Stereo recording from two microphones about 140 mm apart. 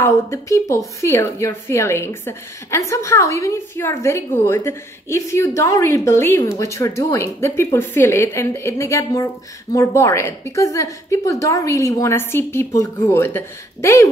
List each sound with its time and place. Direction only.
0.0 s a woman's voice: 20° left (ahead or behind)